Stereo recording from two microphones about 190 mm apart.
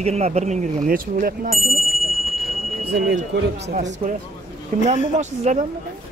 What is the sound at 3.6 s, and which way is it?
Speech, 40° right (ahead or behind).